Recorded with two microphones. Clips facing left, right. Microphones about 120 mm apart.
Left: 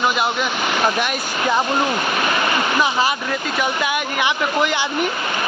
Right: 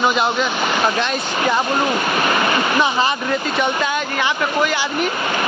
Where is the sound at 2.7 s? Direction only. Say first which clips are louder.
Even; 5° left (ahead or behind).